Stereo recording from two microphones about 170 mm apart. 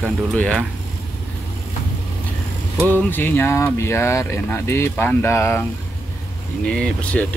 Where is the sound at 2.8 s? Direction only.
10° left (ahead or behind).